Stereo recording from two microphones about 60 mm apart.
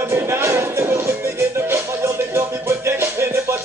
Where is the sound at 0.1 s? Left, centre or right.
Right.